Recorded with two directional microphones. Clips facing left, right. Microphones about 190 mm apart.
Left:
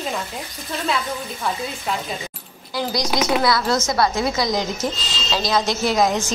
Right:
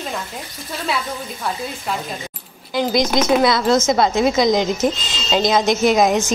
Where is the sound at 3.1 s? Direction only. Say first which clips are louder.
Right 4 dB; centre (ahead or behind).